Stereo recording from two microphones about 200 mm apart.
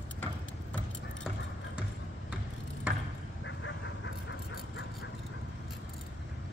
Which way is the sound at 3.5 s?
70° left (ahead or behind).